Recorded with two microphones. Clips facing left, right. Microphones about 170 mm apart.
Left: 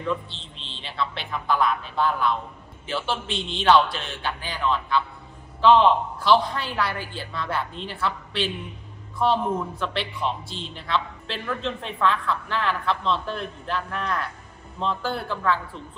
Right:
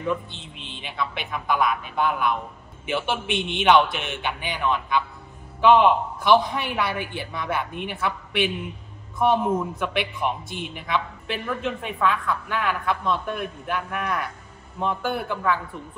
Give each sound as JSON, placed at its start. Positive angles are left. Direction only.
{"t": 0.0, "sound": "a man's voice", "side_deg": -15}
{"t": 9.6, "sound": "a man's voice", "side_deg": -15}